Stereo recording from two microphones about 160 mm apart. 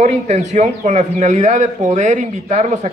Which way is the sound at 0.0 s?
45° right (ahead or behind).